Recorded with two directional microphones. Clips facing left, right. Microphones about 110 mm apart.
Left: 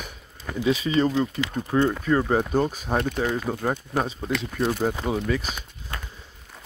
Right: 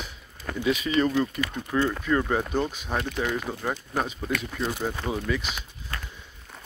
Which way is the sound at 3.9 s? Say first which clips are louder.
Left 2 dB; 25° left (ahead or behind).